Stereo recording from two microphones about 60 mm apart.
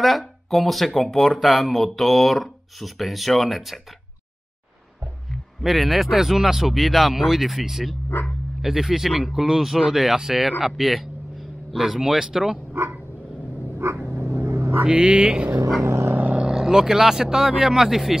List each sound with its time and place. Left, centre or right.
0.0 s speech: centre
5.6 s speech: centre
8.1 s speech: left
8.6 s speech: centre
13.8 s dog: right
14.3 s vehicle: right
14.9 s speech: centre
15.8 s dog: right
16.1 s vehicle: right
16.4 s speech: centre